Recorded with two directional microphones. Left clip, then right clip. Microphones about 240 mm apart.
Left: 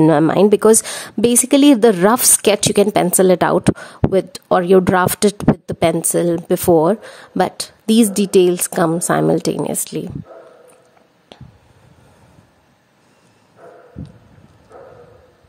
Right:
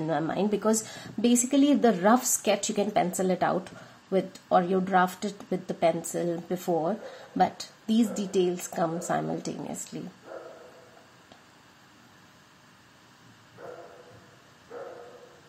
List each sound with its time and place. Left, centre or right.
0.0 s a woman's voice: left